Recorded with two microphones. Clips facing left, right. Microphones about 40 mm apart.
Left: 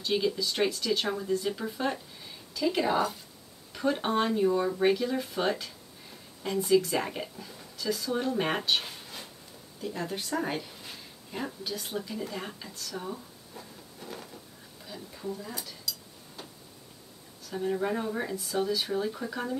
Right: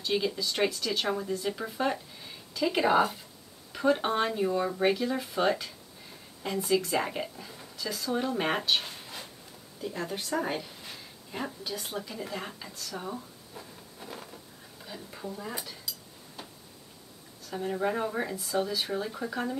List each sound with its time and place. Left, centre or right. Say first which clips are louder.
0.0 s speech: left 1 dB; centre
2.5 s speech: right 2 dB; centre
3.7 s speech: right 1 dB; centre
12.3 s a sound: even; centre
14.9 s speech: left 2 dB; right
17.5 s speech: left 1 dB; centre